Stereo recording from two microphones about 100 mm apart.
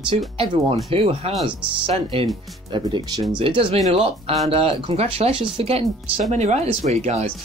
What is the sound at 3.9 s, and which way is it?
Speech, 80° right.